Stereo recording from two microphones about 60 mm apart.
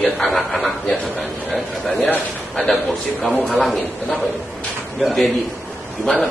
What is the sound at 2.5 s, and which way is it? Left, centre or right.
A man's voice, centre.